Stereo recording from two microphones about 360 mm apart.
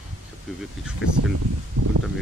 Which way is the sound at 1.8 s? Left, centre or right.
Right.